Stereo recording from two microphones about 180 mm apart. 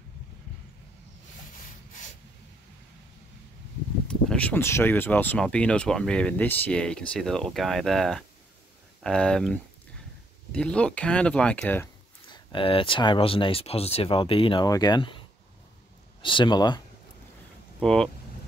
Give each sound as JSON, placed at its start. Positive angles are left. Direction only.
{"t": 4.1, "sound": "speech", "side_deg": 5}
{"t": 12.3, "sound": "speech", "side_deg": 30}
{"t": 17.7, "sound": "speech", "side_deg": 5}